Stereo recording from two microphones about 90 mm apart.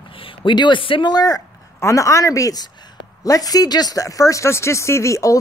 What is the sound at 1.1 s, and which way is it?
Speech, 45° left (ahead or behind).